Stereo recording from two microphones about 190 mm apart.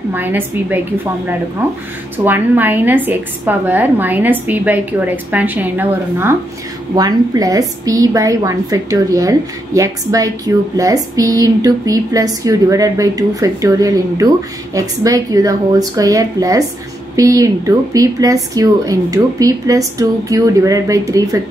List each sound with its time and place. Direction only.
0.1 s a woman's voice: 10° right (ahead or behind)
2.2 s a woman's voice: 10° right (ahead or behind)